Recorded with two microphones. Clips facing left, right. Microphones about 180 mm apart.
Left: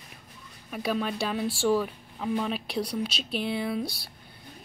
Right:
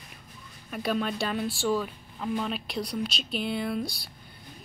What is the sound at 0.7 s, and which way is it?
Speech, centre (ahead or behind).